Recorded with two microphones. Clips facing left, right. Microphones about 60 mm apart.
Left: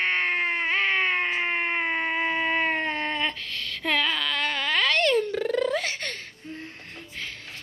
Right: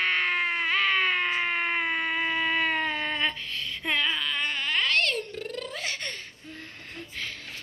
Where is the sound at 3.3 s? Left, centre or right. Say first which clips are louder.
Left 1 dB; left.